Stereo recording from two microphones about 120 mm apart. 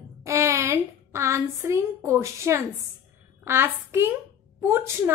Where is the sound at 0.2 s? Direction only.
25° right (ahead or behind).